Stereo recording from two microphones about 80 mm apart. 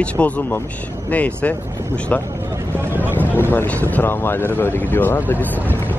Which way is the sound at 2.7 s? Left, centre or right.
Right.